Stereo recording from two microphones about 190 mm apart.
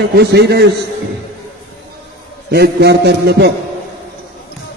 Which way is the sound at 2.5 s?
60° right (ahead or behind).